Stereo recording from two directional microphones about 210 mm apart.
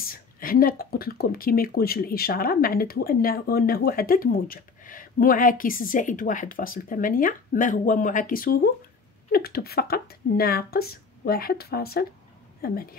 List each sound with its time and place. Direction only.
0.0 s speech: 45° left (ahead or behind)